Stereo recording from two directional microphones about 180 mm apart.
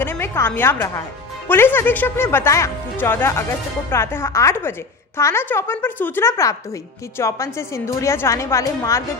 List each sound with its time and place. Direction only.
0.0 s a woman's voice: 10° left (ahead or behind)